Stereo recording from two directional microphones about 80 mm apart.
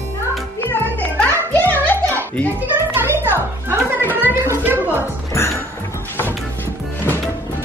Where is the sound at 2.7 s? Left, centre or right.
Right.